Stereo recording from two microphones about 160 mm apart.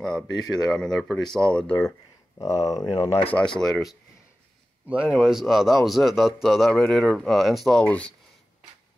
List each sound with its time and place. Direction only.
0.0 s speech: 5° left (ahead or behind)
2.3 s speech: 20° left (ahead or behind)
3.3 s speech: 5° left (ahead or behind)